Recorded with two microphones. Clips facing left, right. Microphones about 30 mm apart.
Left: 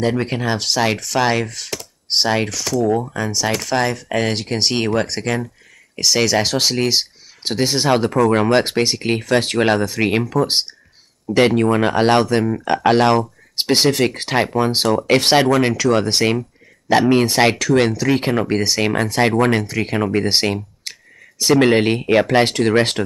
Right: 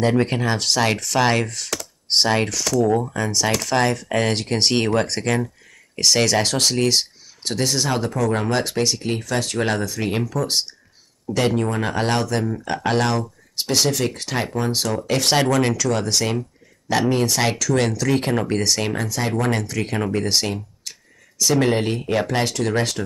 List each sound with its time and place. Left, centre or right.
0.0 s speech: centre
7.4 s speech: left
11.3 s speech: left
15.3 s speech: left
17.7 s speech: left
18.9 s speech: left
19.5 s speech: left